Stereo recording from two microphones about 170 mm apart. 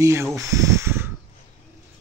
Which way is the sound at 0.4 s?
20° right (ahead or behind).